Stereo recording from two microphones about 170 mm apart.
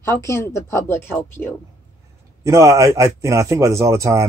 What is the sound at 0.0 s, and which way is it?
Speech, 15° left (ahead or behind).